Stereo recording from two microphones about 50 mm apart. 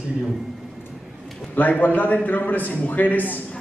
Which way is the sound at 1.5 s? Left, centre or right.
Left.